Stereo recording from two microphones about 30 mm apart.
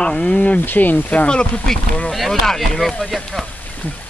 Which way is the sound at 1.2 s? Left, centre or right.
Left.